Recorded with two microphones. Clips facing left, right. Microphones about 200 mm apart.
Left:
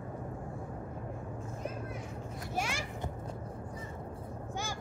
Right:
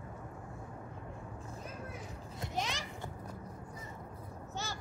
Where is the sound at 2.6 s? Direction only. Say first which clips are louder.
Left 2 dB; 10° left (ahead or behind).